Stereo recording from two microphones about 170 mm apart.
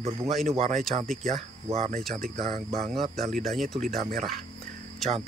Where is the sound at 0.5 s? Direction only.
40° right (ahead or behind).